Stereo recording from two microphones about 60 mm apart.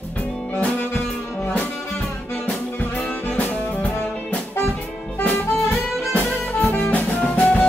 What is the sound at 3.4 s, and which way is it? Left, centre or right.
Music, left.